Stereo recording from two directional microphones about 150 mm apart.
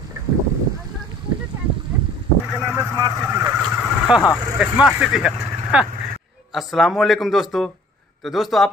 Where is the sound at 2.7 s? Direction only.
20° right (ahead or behind).